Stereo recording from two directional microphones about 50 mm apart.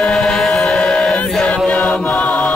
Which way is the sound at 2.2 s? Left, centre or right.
Left.